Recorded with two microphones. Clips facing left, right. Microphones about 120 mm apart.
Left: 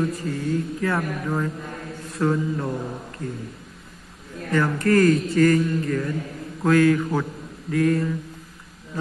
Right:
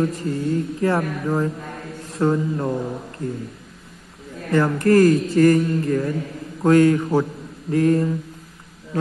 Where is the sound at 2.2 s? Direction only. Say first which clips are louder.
Right 3 dB; 30° right (ahead or behind).